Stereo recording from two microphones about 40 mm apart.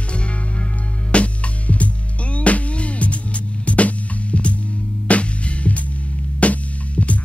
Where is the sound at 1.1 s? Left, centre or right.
Left.